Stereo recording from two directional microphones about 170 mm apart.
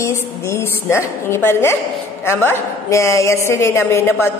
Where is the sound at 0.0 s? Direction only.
15° left (ahead or behind).